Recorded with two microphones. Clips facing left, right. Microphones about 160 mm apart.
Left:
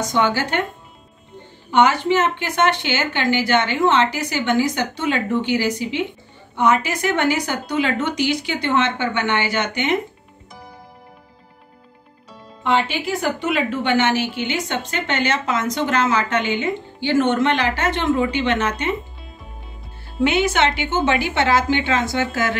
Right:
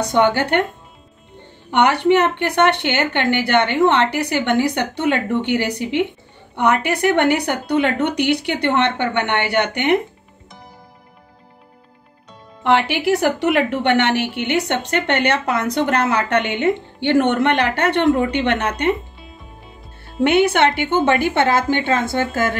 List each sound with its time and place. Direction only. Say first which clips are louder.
0.0 s a woman's voice: right 3 dB; 60° right (ahead or behind)
1.7 s a woman's voice: right 2 dB; 65° right (ahead or behind)
12.6 s a woman's voice: right 4 dB; 70° right (ahead or behind)
20.2 s a woman's voice: right 4 dB; 60° right (ahead or behind)